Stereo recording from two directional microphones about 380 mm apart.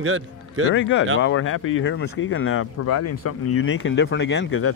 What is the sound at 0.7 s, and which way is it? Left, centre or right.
Speech, left.